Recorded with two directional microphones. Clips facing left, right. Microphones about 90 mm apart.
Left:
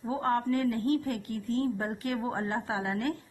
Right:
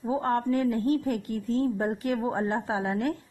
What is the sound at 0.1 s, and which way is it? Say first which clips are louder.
A woman's voice: right 2 dB; 35° right (ahead or behind).